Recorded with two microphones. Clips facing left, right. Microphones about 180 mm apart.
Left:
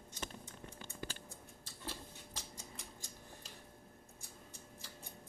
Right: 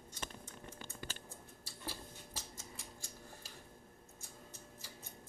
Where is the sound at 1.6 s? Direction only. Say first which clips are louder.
Even; 10° right (ahead or behind).